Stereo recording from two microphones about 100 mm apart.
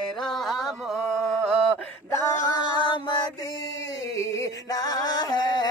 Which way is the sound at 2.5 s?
50° left (ahead or behind).